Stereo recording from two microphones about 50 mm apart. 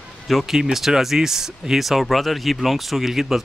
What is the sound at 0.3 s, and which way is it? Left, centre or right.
Speech, centre.